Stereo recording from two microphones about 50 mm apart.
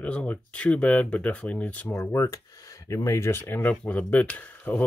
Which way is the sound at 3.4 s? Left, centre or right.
Left.